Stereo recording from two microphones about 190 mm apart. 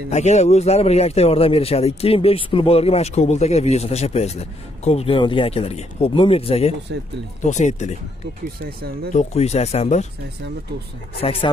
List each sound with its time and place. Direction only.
0.1 s a man's voice: 35° left (ahead or behind)
6.9 s speech: 60° right (ahead or behind)
7.4 s a man's voice: 40° left (ahead or behind)
8.6 s speech: 55° right (ahead or behind)
9.1 s a man's voice: 35° left (ahead or behind)
11.1 s speech: 30° left (ahead or behind)